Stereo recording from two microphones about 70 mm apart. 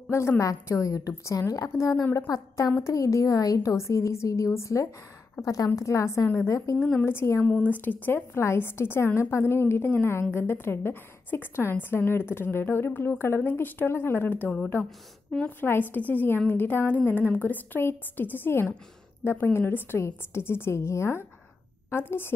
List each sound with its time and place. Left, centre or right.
0.4 s a woman's voice: left
5.4 s a woman's voice: left
5.8 s a woman's voice: left
6.8 s a woman's voice: left
7.4 s a woman's voice: centre
15.6 s a woman's voice: left